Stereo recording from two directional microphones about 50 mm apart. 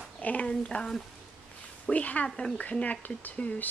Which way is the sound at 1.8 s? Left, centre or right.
Left.